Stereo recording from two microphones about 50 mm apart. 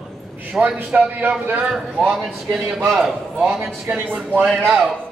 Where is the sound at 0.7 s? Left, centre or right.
Right.